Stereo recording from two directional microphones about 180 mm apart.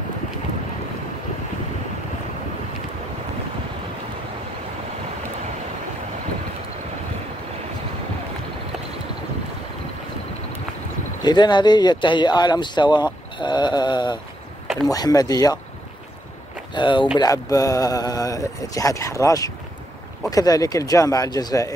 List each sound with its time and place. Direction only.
11.2 s speech: 25° left (ahead or behind)
13.4 s a sound: 25° left (ahead or behind)
14.9 s speech: 20° left (ahead or behind)
16.7 s speech: 25° left (ahead or behind)